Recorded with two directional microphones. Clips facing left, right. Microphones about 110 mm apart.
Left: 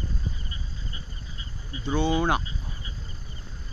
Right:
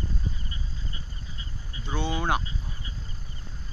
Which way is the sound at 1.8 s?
Centre (ahead or behind).